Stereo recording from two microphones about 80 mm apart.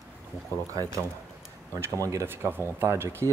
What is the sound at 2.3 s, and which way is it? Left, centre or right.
Speech, right.